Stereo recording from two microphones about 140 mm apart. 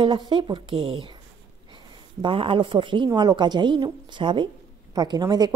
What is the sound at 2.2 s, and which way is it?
A woman's voice, 40° right (ahead or behind).